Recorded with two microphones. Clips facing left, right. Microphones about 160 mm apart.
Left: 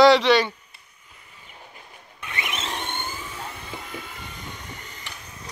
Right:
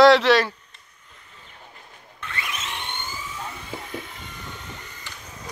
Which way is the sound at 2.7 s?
45° left (ahead or behind).